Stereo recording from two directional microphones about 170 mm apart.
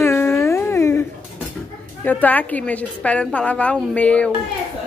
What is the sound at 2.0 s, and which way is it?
A woman's voice, 10° left (ahead or behind).